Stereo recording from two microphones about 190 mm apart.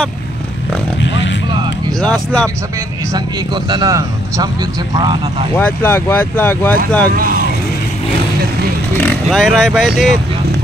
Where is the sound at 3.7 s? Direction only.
20° right (ahead or behind).